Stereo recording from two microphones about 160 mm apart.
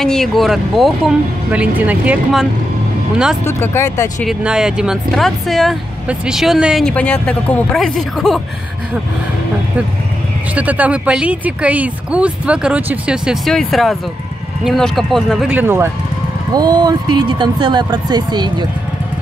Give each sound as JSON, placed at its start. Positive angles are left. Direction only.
{"t": 0.0, "sound": "speech", "side_deg": 0}
{"t": 3.4, "sound": "speech", "side_deg": 15}
{"t": 4.2, "sound": "speech", "side_deg": -5}
{"t": 10.5, "sound": "speech", "side_deg": -10}
{"t": 16.5, "sound": "speech", "side_deg": -25}